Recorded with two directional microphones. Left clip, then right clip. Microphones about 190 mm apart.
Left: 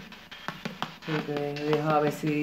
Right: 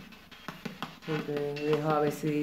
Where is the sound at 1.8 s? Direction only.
5° left (ahead or behind).